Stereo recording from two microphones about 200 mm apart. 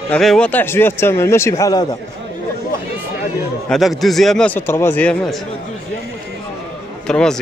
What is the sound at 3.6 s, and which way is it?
Speech, centre (ahead or behind).